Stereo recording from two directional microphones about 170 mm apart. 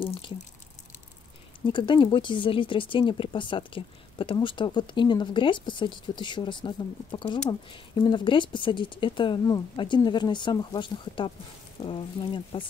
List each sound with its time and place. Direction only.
0.0 s speech: 30° left (ahead or behind)
1.6 s speech: 30° left (ahead or behind)